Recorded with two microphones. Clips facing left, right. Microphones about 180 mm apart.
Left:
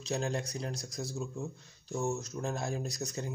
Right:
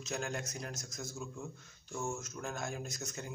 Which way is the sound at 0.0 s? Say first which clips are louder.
Left 5 dB; 30° left (ahead or behind).